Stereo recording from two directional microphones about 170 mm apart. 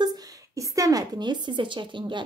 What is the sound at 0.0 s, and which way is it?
Speech, 20° right (ahead or behind).